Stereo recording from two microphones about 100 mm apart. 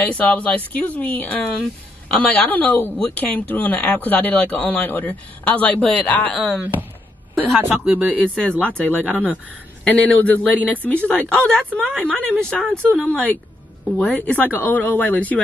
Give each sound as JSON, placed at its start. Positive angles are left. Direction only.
{"t": 0.0, "sound": "speech", "side_deg": 15}
{"t": 7.3, "sound": "speech", "side_deg": 10}
{"t": 7.8, "sound": "speech", "side_deg": -15}
{"t": 8.2, "sound": "speech", "side_deg": 10}